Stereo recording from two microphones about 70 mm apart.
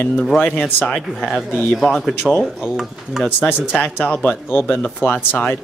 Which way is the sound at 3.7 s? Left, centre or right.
Centre.